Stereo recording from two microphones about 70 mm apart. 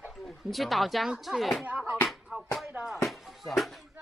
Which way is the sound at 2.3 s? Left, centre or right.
Right.